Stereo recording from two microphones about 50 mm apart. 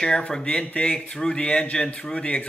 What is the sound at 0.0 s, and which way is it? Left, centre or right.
Speech, centre.